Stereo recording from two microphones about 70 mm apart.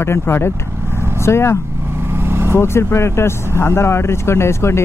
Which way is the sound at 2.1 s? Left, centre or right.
Right.